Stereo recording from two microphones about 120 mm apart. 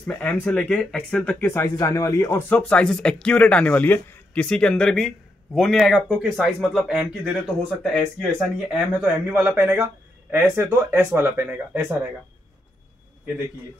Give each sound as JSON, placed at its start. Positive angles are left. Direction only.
{"t": 0.0, "sound": "speech", "side_deg": 15}
{"t": 1.4, "sound": "speech", "side_deg": 20}
{"t": 2.7, "sound": "speech", "side_deg": 5}
{"t": 7.8, "sound": "speech", "side_deg": 5}
{"t": 8.6, "sound": "speech", "side_deg": -10}